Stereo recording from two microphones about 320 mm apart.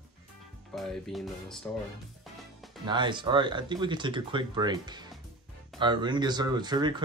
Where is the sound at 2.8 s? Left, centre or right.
Centre.